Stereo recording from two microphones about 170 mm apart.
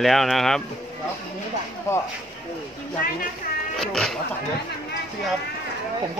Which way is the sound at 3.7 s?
Centre (ahead or behind).